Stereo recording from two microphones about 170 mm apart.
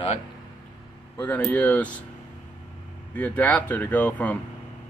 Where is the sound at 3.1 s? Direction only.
10° left (ahead or behind).